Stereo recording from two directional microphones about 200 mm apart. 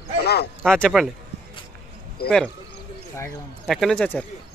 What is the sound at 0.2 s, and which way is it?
Speech, 55° left (ahead or behind).